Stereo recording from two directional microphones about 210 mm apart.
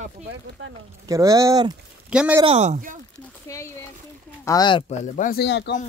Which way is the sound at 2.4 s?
30° right (ahead or behind).